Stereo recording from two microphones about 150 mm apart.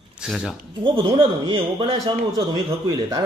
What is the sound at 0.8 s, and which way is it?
A man's voice, 35° right (ahead or behind).